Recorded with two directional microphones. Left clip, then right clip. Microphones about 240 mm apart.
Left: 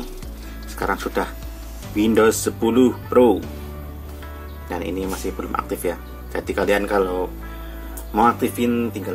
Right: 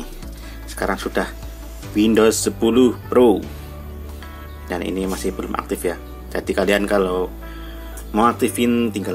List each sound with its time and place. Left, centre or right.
0.7 s speech: centre
4.6 s speech: centre